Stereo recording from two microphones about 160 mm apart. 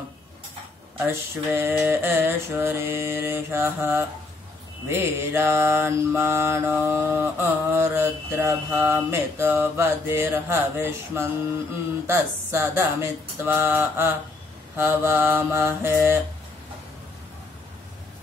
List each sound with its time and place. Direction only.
0.9 s mantra: 15° right (ahead or behind)